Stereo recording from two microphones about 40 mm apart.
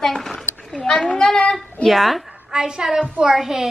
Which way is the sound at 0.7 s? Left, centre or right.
Left.